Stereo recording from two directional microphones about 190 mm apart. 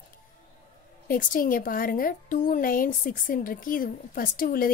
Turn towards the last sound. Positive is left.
turn(degrees=50)  # may be behind; listen again after turning